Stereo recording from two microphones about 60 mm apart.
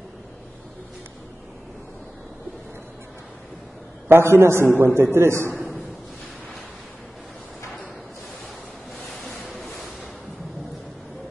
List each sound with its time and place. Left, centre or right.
4.1 s a man's voice: right
9.1 s waves: centre
9.6 s a sound: centre